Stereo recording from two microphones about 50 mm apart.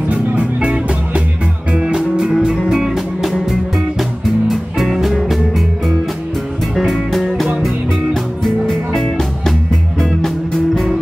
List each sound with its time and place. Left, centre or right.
0.1 s music: right
2.3 s music: centre
4.5 s music: centre
6.7 s music: centre